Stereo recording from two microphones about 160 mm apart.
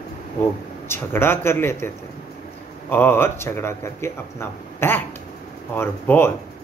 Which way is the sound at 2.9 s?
15° left (ahead or behind).